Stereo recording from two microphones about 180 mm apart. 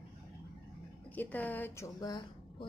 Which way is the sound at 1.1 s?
10° left (ahead or behind).